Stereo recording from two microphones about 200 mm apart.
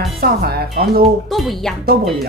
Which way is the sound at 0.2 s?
50° right (ahead or behind).